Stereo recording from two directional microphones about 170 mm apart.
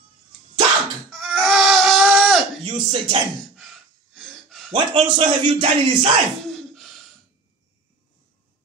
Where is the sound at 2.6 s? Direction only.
30° right (ahead or behind).